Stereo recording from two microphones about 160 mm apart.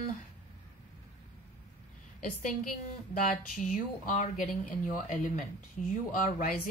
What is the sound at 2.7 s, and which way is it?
Speech, 55° left (ahead or behind).